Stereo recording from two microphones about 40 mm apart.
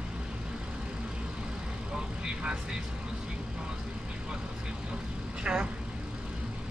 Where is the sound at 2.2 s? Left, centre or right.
Right.